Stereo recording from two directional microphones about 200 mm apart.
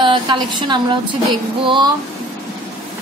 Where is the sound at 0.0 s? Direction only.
25° right (ahead or behind).